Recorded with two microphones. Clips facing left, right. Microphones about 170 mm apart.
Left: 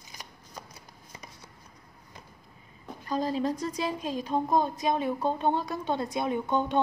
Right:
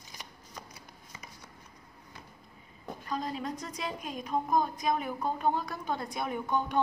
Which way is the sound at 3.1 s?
30° left (ahead or behind).